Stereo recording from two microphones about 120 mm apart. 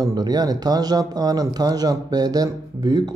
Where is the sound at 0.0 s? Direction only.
35° right (ahead or behind).